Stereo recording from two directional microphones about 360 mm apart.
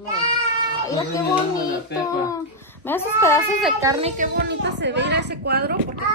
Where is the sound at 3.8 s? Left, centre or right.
Centre.